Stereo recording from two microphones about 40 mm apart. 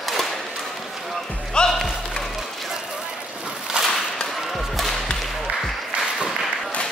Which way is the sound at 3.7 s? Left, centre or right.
Right.